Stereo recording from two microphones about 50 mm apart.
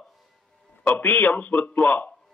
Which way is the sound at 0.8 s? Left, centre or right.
Left.